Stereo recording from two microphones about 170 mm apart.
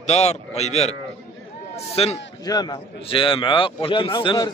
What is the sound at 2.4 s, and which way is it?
A man's voice, 25° left (ahead or behind).